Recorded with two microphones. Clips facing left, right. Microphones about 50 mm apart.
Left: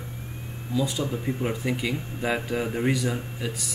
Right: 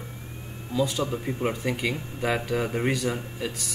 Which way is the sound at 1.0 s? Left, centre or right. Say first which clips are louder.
Right 1 dB; right.